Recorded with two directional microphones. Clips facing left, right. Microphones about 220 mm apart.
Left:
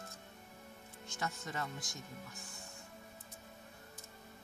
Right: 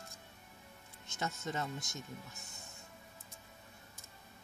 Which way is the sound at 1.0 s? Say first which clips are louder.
Right 2 dB; 20° right (ahead or behind).